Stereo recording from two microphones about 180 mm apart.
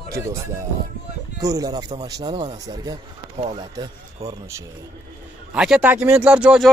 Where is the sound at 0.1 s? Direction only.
15° right (ahead or behind).